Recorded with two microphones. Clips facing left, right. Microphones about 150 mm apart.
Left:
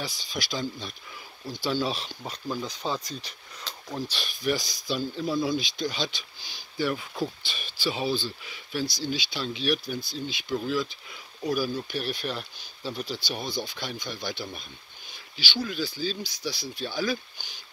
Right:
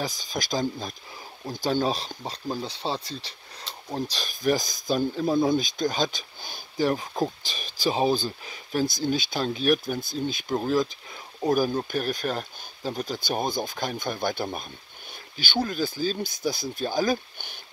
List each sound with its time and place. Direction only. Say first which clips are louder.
0.0 s speech: right 4 dB; 45° right (ahead or behind)